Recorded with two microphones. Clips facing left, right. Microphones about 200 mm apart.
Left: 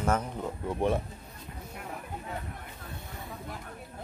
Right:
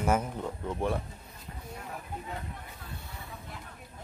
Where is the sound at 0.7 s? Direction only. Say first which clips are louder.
Left 4 dB; 20° left (ahead or behind).